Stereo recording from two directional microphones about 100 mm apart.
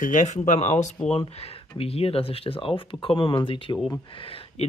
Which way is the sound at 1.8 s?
80° left.